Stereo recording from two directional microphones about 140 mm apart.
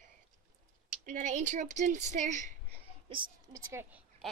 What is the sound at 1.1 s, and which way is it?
Speech, 65° right (ahead or behind).